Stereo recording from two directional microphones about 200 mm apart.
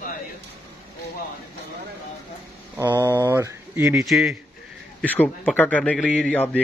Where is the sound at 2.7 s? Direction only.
10° right (ahead or behind).